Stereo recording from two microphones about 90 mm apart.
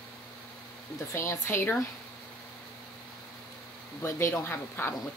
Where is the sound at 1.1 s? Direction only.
30° left (ahead or behind).